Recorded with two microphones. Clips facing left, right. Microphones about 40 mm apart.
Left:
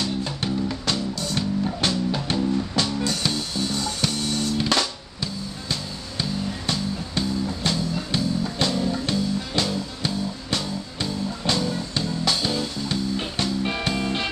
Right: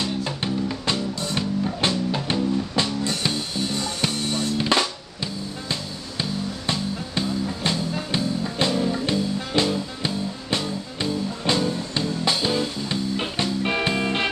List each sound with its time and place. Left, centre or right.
0.0 s music: right
4.6 s music: centre